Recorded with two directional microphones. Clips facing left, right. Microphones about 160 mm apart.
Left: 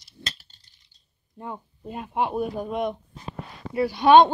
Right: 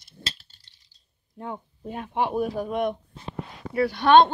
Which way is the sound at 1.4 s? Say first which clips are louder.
Right 1 dB; centre (ahead or behind).